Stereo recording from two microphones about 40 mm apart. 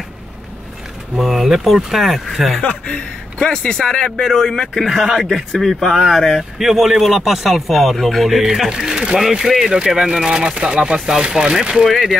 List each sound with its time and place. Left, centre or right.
1.1 s speech: centre
2.6 s speech: left; by 4.8 s centre
4.9 s speech: centre
8.6 s speech: centre
9.7 s speech: right
11.9 s speech: centre